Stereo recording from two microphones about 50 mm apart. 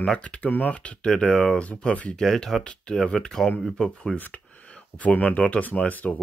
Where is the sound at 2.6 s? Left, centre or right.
Left.